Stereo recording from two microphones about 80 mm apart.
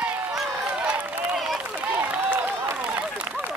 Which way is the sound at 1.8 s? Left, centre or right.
Right.